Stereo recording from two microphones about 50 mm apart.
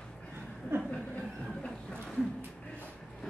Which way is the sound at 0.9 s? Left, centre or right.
Left.